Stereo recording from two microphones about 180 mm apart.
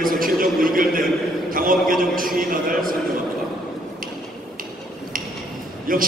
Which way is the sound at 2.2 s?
50° right (ahead or behind).